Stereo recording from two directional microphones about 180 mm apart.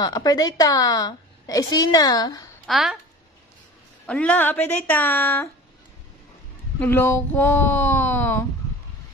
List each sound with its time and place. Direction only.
0.0 s a woman's voice: 20° left (ahead or behind)
2.6 s a child's voice: centre (ahead or behind)
4.0 s speech: 5° left (ahead or behind)
6.8 s speech: 10° left (ahead or behind)